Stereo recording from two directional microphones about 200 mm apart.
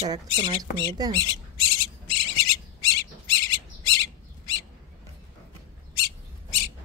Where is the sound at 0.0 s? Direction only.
25° right (ahead or behind).